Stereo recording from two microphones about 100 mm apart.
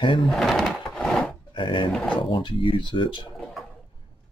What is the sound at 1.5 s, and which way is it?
Speech, 55° left (ahead or behind).